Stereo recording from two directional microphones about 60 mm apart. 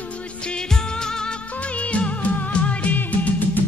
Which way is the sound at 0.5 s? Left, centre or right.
Centre.